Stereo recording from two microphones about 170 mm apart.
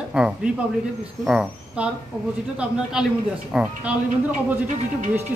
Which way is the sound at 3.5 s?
5° right (ahead or behind).